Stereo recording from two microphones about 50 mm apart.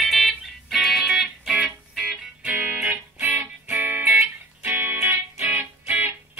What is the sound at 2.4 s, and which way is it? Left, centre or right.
Music, right.